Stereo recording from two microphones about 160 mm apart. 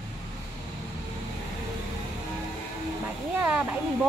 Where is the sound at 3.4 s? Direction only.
10° right (ahead or behind).